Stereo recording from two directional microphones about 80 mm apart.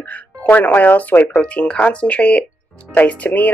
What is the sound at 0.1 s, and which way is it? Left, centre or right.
Speech, left.